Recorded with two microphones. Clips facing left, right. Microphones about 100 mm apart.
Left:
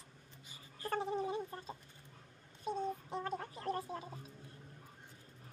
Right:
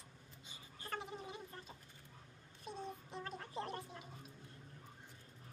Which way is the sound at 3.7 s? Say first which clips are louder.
Left 8 dB; 35° left (ahead or behind).